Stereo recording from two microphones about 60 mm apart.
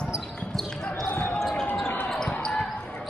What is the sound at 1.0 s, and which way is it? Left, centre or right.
Basketball bounce, left.